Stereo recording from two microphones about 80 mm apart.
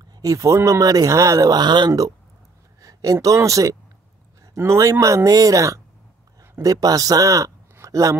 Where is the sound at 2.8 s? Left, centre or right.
Right.